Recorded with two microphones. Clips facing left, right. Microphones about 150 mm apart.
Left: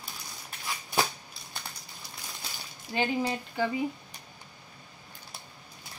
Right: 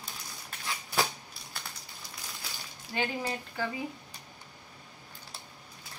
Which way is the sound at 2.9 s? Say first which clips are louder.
Left 4 dB; 20° left (ahead or behind).